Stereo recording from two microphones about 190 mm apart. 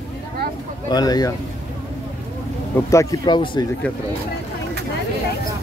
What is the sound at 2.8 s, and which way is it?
Speech, 15° left (ahead or behind).